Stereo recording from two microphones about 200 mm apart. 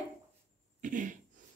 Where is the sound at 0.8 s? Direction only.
40° right (ahead or behind).